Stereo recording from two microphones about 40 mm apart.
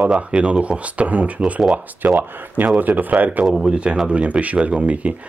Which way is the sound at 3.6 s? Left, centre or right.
Right.